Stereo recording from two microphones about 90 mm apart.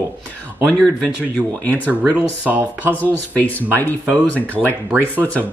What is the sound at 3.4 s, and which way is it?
Speech, 20° left (ahead or behind).